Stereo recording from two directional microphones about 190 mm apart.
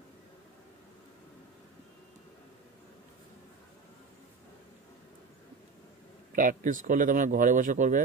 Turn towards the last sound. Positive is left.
turn(degrees=-45)  # may be behind; listen again after turning